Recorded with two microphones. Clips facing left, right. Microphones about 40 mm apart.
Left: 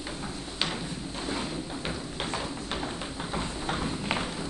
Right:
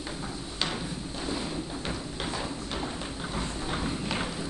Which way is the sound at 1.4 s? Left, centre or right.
Centre.